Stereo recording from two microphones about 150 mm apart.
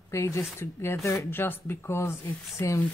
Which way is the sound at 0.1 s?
20° left (ahead or behind).